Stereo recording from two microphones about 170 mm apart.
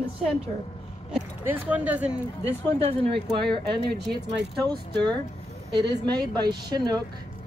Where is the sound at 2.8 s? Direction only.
35° right (ahead or behind).